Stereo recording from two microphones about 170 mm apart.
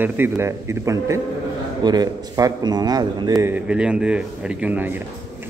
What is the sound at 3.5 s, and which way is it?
A man's voice, 5° right (ahead or behind).